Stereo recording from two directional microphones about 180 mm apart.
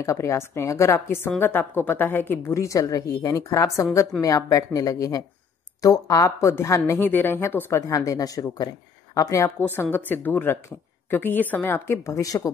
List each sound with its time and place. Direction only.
0.0 s a woman's voice: 15° left (ahead or behind)